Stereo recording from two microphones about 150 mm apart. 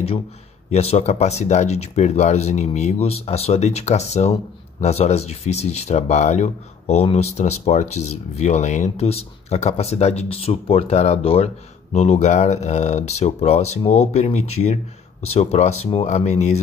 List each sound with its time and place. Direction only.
0.7 s speech: 45° left (ahead or behind)